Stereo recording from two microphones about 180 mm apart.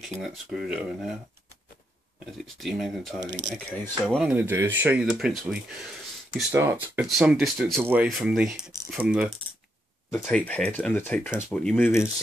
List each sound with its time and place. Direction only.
0.2 s speech: centre (ahead or behind)
2.2 s speech: centre (ahead or behind)
3.2 s speech: 85° right
4.2 s speech: 10° right (ahead or behind)
7.1 s speech: centre (ahead or behind)
10.1 s speech: 10° left (ahead or behind)